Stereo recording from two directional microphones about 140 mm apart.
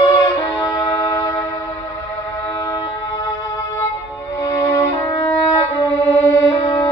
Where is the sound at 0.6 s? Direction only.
25° left (ahead or behind).